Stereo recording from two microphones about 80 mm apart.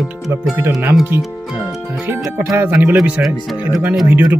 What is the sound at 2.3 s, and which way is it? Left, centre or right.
Speech, right.